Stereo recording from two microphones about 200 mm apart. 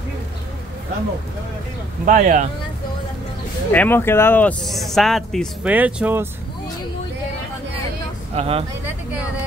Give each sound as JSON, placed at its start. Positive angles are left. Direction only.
{"t": 2.0, "sound": "speech", "side_deg": -40}
{"t": 3.7, "sound": "speech", "side_deg": 10}
{"t": 8.4, "sound": "speech", "side_deg": -30}